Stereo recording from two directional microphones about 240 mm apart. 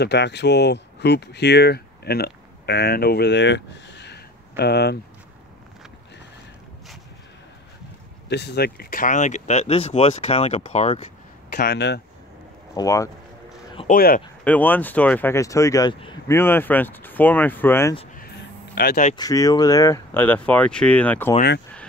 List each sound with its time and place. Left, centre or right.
0.0 s speech: left
8.3 s speech: left
11.5 s speech: left
12.7 s speech: centre
13.7 s speech: left
14.4 s speech: centre
18.8 s speech: left
19.1 s speech: centre